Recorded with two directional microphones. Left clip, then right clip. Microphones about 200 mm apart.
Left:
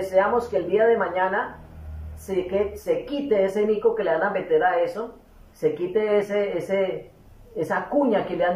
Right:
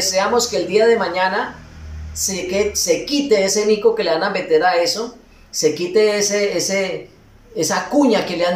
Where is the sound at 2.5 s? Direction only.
15° right (ahead or behind).